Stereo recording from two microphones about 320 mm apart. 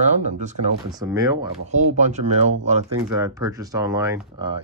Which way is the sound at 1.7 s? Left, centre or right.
Right.